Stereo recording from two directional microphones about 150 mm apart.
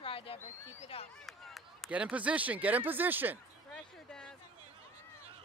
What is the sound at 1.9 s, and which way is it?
Speech, 10° right (ahead or behind).